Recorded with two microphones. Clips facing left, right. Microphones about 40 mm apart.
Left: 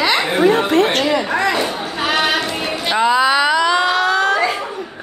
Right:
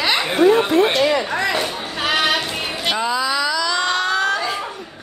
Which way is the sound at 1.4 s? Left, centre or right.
Centre.